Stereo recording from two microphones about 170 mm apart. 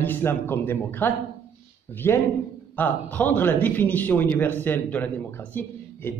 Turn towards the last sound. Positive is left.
turn(degrees=10)  # may be behind; listen again after turning